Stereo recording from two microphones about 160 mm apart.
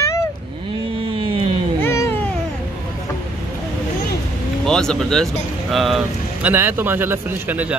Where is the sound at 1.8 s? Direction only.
15° left (ahead or behind).